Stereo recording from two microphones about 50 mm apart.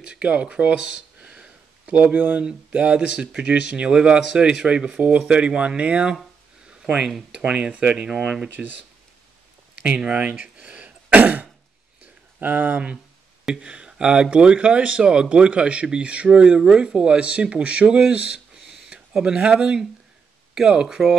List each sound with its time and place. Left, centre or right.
0.0 s speech: right
7.3 s speech: right
9.8 s throat clearing: right
12.4 s speech: right
13.6 s speech: centre
18.7 s a sound: centre
20.5 s speech: centre